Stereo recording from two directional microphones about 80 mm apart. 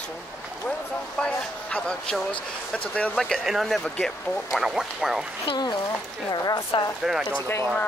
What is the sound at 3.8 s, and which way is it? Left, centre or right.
Speech, centre.